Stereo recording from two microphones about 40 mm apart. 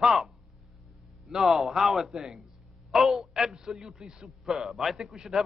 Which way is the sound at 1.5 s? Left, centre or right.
Centre.